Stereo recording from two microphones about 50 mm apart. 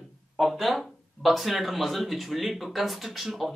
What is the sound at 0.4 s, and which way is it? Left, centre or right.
A woman's voice, centre.